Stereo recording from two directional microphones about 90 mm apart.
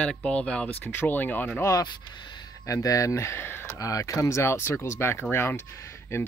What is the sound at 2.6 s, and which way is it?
Speech, 40° left (ahead or behind).